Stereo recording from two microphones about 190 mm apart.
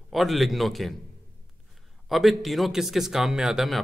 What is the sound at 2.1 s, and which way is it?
Speech, centre (ahead or behind).